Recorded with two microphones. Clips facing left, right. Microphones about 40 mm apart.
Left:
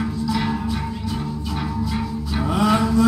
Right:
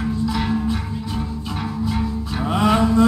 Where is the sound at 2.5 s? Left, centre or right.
Right.